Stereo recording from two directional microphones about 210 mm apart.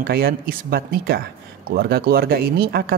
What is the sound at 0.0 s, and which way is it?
Speech, 45° right (ahead or behind).